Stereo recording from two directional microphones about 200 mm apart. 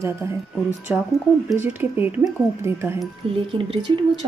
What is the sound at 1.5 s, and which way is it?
Speech, 10° right (ahead or behind).